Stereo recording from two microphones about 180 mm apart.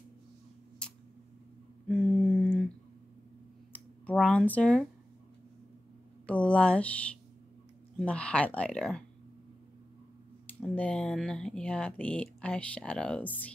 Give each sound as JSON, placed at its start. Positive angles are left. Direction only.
{"t": 0.8, "sound": "tick", "side_deg": 5}
{"t": 1.9, "sound": "a sound", "side_deg": 5}
{"t": 3.7, "sound": "speech", "side_deg": 10}
{"t": 6.2, "sound": "speech", "side_deg": 5}
{"t": 10.4, "sound": "speech", "side_deg": 5}